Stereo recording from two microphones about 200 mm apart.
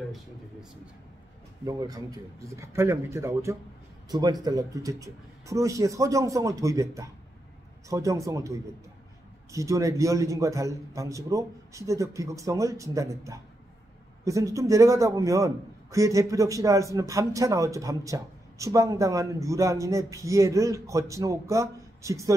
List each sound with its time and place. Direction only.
1.7 s a man's voice: 20° right (ahead or behind)